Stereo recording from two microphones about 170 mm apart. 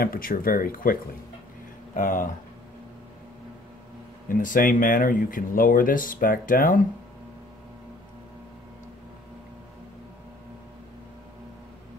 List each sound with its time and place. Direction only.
0.0 s speech: 60° left (ahead or behind)
2.0 s speech: 50° left (ahead or behind)
4.3 s speech: 55° left (ahead or behind)